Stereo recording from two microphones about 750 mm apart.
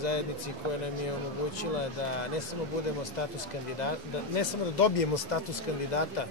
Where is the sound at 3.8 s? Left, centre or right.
Left.